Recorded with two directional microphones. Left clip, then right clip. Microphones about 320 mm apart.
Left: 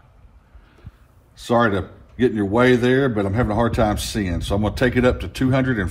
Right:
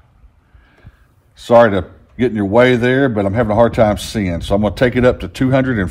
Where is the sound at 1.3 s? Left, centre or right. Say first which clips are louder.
Right 9 dB; right.